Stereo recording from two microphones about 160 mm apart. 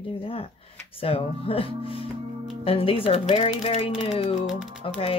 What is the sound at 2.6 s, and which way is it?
Speech, 35° left (ahead or behind).